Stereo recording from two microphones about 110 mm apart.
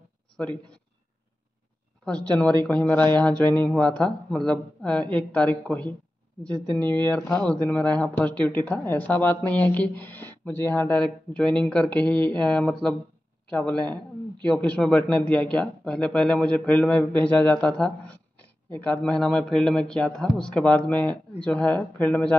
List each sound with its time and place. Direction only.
2.0 s speech: 10° left (ahead or behind)
6.8 s speech: 40° right (ahead or behind)
7.1 s speech: 10° left (ahead or behind)